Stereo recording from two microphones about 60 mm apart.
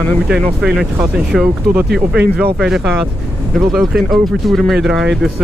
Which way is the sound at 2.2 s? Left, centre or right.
Right.